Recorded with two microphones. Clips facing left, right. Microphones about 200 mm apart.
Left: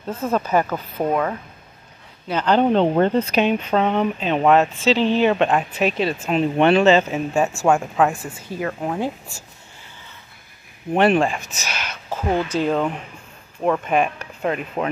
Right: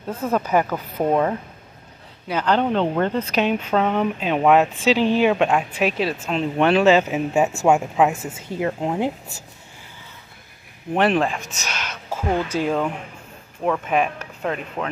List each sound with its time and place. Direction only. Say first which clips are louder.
0.1 s speech: even; 15° right (ahead or behind)
2.2 s speech: left 1 dB; 10° right (ahead or behind)
2.6 s speech: left 4 dB; 30° left (ahead or behind)
3.3 s speech: left 1 dB; centre (ahead or behind)
8.1 s a woman's voice: right 1 dB; 20° right (ahead or behind)
11.0 s speech: left 2 dB; centre (ahead or behind)